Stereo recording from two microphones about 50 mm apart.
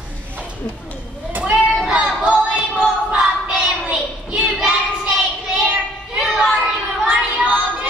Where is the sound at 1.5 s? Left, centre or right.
Centre.